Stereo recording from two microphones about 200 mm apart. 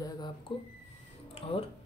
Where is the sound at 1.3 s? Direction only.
30° left (ahead or behind).